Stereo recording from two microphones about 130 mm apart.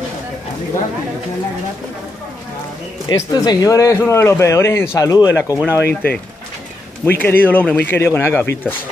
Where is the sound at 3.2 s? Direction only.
30° left (ahead or behind).